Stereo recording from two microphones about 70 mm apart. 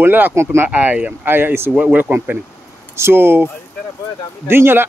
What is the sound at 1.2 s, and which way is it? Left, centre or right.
Speech, right.